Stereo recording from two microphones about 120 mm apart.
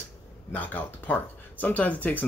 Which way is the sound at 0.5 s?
15° left (ahead or behind).